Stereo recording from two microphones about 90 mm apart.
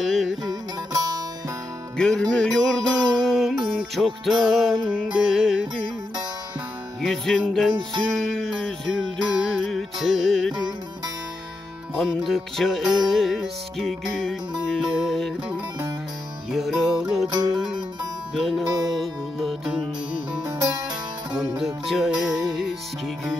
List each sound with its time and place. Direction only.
0.0 s music: centre (ahead or behind)
0.5 s music: 45° right (ahead or behind)
2.0 s music: 5° left (ahead or behind)
7.0 s music: centre (ahead or behind)
11.9 s music: 5° right (ahead or behind)
16.5 s music: centre (ahead or behind)
17.3 s music: 50° right (ahead or behind)
17.6 s music: 5° right (ahead or behind)
20.3 s music: 45° right (ahead or behind)
21.5 s music: centre (ahead or behind)